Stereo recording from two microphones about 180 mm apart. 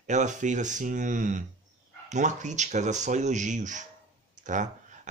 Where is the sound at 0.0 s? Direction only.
40° right (ahead or behind).